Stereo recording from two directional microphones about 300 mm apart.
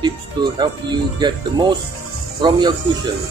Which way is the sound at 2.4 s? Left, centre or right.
Centre.